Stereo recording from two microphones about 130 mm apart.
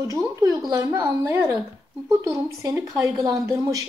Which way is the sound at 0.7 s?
25° right (ahead or behind).